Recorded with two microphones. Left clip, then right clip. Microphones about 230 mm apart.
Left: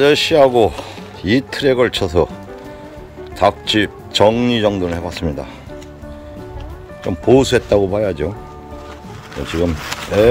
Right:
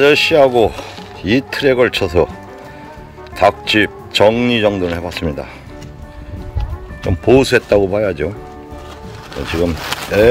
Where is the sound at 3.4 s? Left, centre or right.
Centre.